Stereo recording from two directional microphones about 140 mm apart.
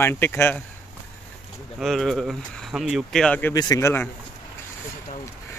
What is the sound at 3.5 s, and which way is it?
Speech, 25° left (ahead or behind).